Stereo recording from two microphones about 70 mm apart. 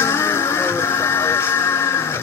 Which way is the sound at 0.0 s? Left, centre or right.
Left.